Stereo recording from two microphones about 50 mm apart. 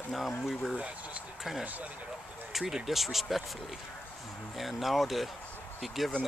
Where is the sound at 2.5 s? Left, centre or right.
Centre.